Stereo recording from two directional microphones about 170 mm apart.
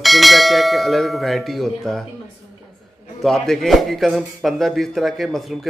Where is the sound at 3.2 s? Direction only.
Centre (ahead or behind).